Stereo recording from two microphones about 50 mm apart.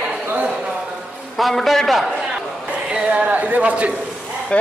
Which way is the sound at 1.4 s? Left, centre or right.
Centre.